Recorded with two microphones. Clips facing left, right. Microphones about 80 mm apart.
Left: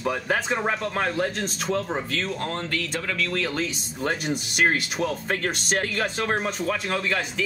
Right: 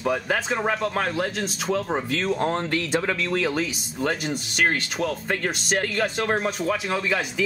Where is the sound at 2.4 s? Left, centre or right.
Right.